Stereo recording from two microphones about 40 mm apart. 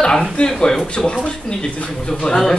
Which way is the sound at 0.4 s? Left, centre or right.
Left.